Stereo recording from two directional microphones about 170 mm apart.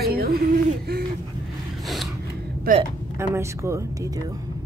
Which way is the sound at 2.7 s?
55° right (ahead or behind).